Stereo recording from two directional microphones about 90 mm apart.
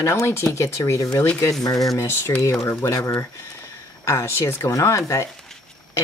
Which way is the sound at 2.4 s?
30° left (ahead or behind).